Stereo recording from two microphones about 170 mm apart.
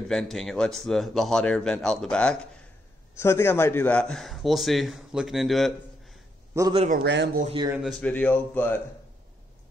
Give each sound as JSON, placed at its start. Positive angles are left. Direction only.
{"t": 0.1, "sound": "a man's voice", "side_deg": 0}
{"t": 6.5, "sound": "a man's voice", "side_deg": -15}
{"t": 6.9, "sound": "speech", "side_deg": -75}
{"t": 7.7, "sound": "a man's voice", "side_deg": 0}
{"t": 8.1, "sound": "speech", "side_deg": 10}